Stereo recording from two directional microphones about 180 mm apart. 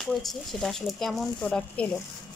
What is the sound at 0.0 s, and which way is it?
Speech, centre (ahead or behind).